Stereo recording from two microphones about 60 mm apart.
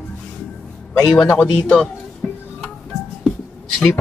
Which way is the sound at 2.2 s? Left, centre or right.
Left.